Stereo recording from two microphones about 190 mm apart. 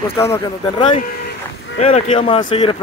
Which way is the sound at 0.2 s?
15° left (ahead or behind).